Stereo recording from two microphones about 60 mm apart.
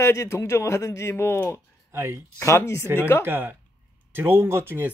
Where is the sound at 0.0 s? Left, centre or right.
Left.